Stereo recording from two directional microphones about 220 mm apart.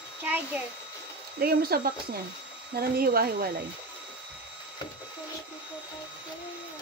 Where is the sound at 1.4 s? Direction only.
45° right (ahead or behind).